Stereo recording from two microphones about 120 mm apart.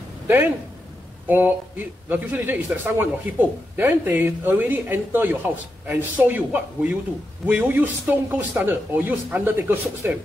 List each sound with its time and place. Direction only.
1.2 s a man's voice: 15° right (ahead or behind)